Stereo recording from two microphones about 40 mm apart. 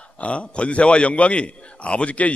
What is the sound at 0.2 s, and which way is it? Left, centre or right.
A man's voice, left.